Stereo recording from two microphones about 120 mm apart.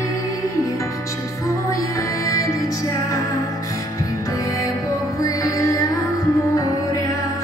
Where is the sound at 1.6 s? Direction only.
25° left (ahead or behind).